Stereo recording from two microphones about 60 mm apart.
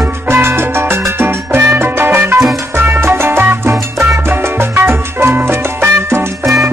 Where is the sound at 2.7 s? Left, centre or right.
Right.